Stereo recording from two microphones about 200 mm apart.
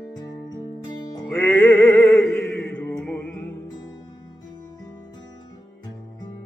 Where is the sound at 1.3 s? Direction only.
10° left (ahead or behind).